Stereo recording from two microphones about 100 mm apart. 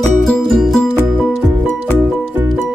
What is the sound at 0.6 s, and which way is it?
Music, centre (ahead or behind).